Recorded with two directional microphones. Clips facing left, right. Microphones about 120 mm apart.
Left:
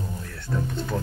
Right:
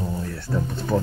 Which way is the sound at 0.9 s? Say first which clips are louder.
Right 8 dB; 25° right (ahead or behind).